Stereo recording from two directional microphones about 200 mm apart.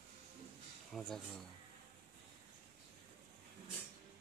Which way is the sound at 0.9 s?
Centre (ahead or behind).